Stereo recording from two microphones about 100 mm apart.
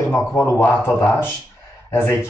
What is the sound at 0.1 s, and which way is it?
Speech, 20° left (ahead or behind).